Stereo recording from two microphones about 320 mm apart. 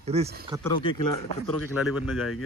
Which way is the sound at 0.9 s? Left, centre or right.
Left.